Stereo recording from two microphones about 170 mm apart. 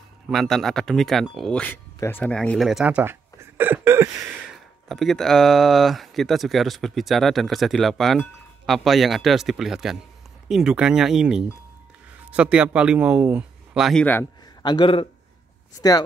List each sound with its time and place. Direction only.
0.3 s speech: centre (ahead or behind); by 4.1 s 15° right (ahead or behind)
4.5 s speech: centre (ahead or behind)
14.6 s a man's voice: 25° left (ahead or behind)